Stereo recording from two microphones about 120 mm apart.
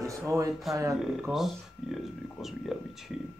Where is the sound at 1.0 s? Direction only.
5° right (ahead or behind).